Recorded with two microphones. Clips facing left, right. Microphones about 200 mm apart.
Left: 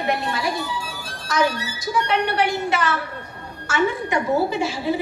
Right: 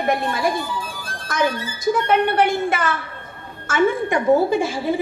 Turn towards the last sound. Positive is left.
turn(degrees=-50)  # may be behind; listen again after turning